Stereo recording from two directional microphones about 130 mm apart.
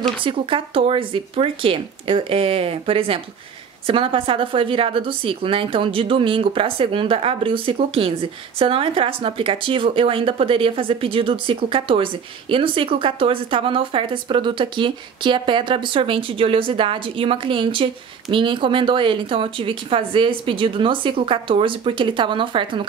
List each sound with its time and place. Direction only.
0.2 s a woman's voice: 40° right (ahead or behind)